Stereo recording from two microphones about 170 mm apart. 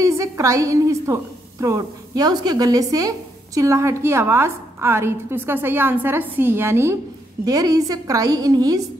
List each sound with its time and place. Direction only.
0.0 s a woman's voice: 20° right (ahead or behind)